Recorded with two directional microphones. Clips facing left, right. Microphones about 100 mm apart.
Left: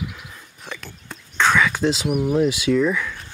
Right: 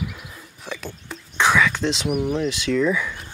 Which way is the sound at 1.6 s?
5° left (ahead or behind).